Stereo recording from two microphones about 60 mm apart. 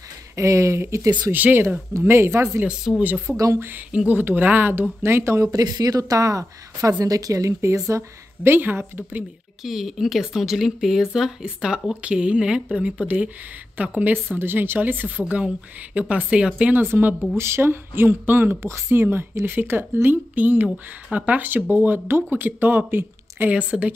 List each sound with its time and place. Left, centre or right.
0.4 s speech: right
1.3 s speech: right
2.0 s speech: right
2.9 s speech: centre
3.3 s speech: right
3.5 s speech: right
3.9 s a woman's voice: centre
4.2 s speech: right
5.0 s speech: right
7.6 s speech: right
8.5 s speech: right
9.6 s a woman's voice: centre
16.7 s speech: right
23.5 s a woman's voice: centre